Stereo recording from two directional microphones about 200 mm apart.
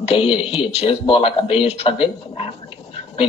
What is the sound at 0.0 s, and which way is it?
Speech, 30° left (ahead or behind).